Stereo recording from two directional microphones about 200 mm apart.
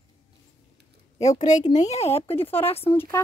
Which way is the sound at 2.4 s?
10° left (ahead or behind).